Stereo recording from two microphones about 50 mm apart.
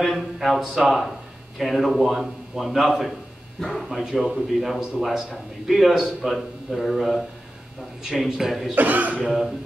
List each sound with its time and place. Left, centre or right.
0.0 s a man's voice: centre
8.7 s speech: right
9.2 s a man's voice: centre